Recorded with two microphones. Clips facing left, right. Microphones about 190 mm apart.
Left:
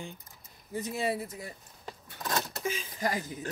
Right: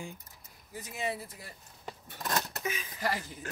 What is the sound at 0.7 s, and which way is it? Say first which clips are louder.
Speech: left 5 dB; 35° left (ahead or behind).